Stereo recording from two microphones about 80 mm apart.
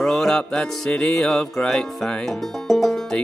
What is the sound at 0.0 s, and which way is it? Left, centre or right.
Music, centre.